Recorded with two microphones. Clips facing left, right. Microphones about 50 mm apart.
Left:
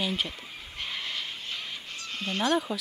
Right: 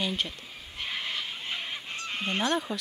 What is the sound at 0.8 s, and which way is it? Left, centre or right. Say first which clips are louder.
Vehicle: right 1 dB; centre.